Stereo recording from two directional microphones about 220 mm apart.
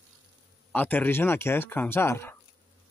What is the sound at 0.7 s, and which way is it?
Speech, 5° left (ahead or behind).